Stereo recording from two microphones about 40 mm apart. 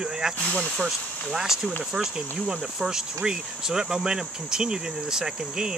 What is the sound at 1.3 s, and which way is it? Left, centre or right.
Speech, centre.